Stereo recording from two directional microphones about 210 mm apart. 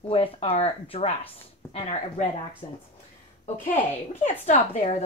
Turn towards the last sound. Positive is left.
turn(degrees=35)  # may be behind; listen again after turning